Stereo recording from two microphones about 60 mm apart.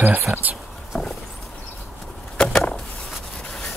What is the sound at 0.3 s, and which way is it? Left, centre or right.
Speech, right.